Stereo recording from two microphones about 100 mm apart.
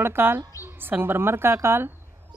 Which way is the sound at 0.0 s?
20° right (ahead or behind).